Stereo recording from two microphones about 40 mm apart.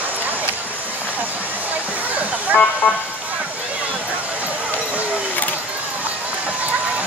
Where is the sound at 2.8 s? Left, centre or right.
Left.